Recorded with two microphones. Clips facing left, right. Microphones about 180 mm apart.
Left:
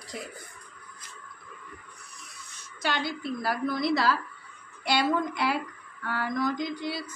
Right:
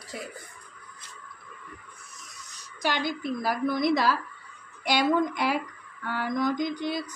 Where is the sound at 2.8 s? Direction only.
15° right (ahead or behind).